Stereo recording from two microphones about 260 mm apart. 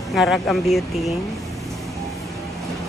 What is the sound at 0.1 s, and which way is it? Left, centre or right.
Speech, centre.